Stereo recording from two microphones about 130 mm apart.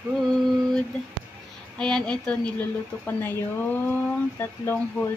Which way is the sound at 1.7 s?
5° left (ahead or behind).